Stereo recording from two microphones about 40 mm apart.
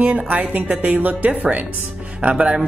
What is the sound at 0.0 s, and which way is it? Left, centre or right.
Speech, right.